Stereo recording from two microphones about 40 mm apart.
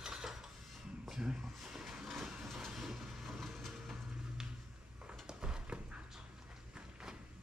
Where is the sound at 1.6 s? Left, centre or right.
Centre.